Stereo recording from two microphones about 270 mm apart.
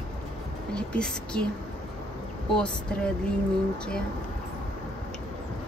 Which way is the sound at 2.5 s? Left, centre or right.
Centre.